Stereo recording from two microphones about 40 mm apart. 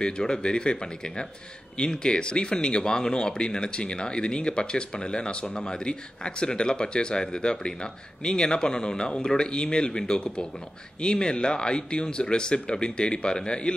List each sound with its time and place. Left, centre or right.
0.0 s speech: left